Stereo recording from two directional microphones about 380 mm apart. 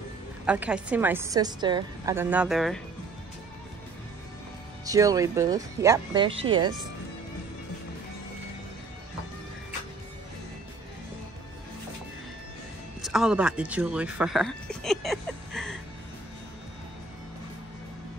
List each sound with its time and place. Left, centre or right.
0.5 s a woman's voice: centre
4.8 s speech: centre
13.0 s speech: centre